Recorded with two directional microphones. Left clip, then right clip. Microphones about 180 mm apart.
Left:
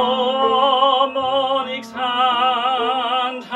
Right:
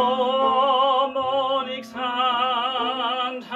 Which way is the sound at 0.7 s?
15° left (ahead or behind).